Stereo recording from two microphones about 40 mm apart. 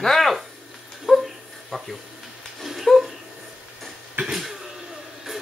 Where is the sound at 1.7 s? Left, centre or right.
Centre.